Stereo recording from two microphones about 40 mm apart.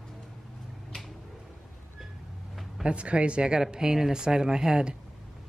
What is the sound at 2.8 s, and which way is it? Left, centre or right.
A woman's voice, right.